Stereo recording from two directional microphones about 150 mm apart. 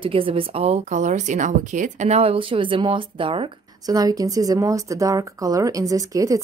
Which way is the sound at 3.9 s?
25° right (ahead or behind).